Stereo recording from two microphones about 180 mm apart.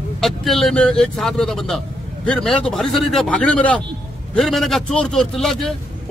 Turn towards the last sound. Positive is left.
turn(degrees=0)  # may be behind; listen again after turning